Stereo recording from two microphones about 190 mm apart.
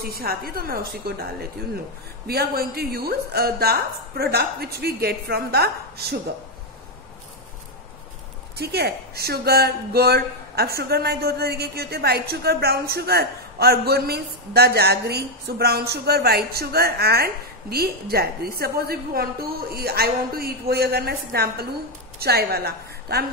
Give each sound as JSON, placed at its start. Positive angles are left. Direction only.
{"t": 0.0, "sound": "a woman's voice", "side_deg": -55}
{"t": 8.5, "sound": "a woman's voice", "side_deg": -55}